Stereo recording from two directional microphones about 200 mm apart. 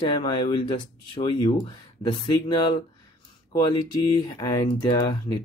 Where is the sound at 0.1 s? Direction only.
25° left (ahead or behind).